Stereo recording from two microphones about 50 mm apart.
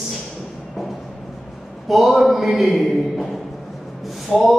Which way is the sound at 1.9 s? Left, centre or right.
Centre.